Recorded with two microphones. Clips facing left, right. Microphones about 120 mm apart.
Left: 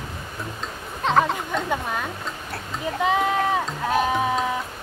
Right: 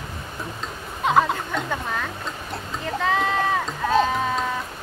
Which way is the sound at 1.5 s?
10° left (ahead or behind).